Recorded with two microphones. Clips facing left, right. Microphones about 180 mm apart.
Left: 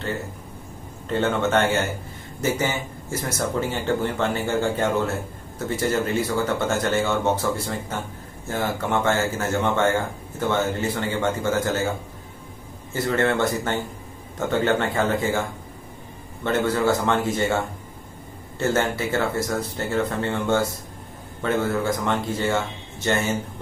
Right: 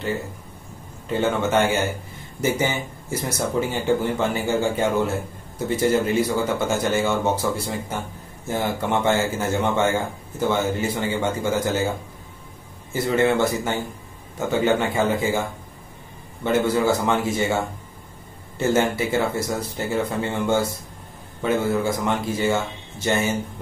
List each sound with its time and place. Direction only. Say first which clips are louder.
1.0 s speech: even; 10° right (ahead or behind)
12.9 s speech: right 2 dB; 10° right (ahead or behind)
16.4 s speech: right 1 dB; 10° right (ahead or behind)